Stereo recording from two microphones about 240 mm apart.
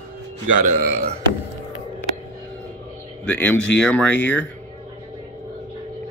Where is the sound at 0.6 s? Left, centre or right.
Right.